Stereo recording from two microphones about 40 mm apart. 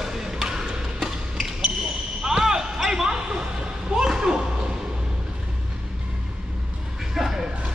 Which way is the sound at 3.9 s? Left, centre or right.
Centre.